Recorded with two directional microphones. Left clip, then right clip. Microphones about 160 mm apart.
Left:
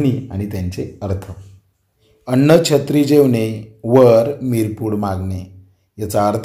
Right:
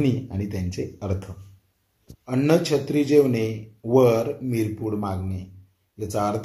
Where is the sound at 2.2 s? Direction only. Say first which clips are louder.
Left 9 dB; 25° left (ahead or behind).